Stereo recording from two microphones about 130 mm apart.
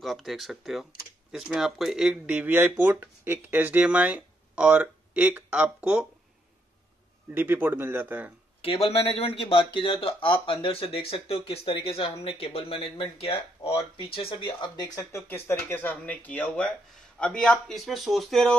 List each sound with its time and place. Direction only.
0.0 s speech: centre (ahead or behind)
7.3 s speech: 15° right (ahead or behind)
8.5 s speech: 45° left (ahead or behind)
15.0 s speech: 20° left (ahead or behind); by 18.6 s centre (ahead or behind)